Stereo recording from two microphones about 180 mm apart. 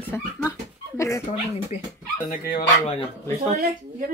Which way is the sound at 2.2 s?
55° left (ahead or behind).